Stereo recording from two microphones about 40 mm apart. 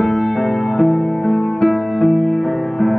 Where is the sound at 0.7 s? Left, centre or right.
Centre.